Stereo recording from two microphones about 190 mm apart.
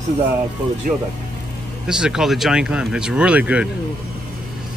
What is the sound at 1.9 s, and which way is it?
Speech, 5° right (ahead or behind).